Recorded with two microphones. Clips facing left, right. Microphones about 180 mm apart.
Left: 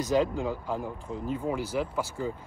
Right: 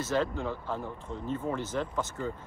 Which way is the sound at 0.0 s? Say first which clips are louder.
Left 4 dB; 15° left (ahead or behind).